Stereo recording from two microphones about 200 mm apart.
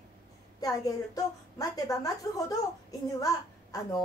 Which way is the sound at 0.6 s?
20° left (ahead or behind).